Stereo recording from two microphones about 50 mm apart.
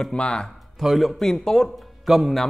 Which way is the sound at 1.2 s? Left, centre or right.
Centre.